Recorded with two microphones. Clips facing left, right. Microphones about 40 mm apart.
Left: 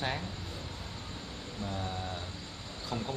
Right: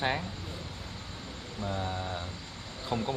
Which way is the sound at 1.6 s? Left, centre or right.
Centre.